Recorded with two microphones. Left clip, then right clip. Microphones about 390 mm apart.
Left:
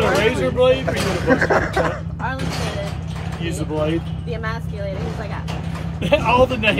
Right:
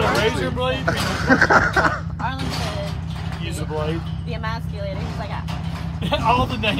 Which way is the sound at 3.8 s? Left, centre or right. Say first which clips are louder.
Left 5 dB; centre.